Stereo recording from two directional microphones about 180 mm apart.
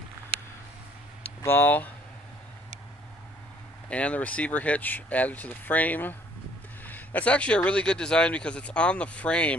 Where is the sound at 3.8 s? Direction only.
5° left (ahead or behind).